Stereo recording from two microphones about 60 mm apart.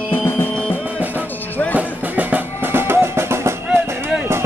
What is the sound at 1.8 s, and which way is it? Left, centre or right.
Music, right.